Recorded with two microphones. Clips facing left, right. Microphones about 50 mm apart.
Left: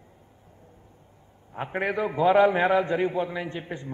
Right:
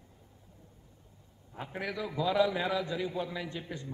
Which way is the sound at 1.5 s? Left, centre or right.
Left.